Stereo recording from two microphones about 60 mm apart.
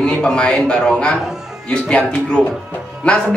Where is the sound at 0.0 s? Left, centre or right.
Centre.